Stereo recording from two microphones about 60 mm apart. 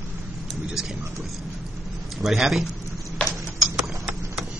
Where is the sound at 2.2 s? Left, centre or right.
Centre.